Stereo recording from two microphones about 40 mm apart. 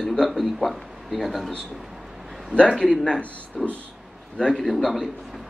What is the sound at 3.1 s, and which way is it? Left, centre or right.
Speech, left.